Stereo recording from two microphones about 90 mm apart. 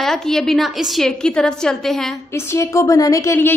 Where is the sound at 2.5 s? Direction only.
35° left (ahead or behind).